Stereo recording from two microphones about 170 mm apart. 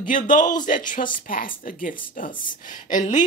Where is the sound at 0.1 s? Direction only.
50° left (ahead or behind).